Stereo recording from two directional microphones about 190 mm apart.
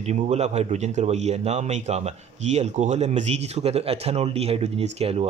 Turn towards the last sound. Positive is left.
turn(degrees=-30)  # may be behind; listen again after turning